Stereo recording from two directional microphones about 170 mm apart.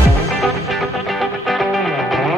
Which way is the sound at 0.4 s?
Centre (ahead or behind).